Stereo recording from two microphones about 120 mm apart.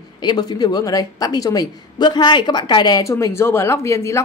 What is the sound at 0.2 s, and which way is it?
A woman's voice, 35° left (ahead or behind).